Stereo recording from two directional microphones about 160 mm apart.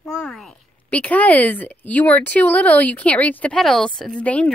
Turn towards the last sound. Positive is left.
turn(degrees=10)  # may be behind; listen again after turning